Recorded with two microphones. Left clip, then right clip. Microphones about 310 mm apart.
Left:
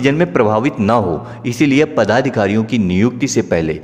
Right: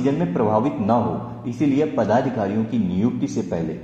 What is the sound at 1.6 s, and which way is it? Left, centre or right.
Speech, left.